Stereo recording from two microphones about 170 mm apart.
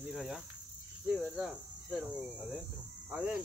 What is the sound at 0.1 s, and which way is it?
Cricket, centre (ahead or behind).